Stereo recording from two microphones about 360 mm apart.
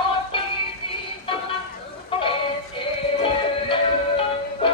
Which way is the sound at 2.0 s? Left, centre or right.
Centre.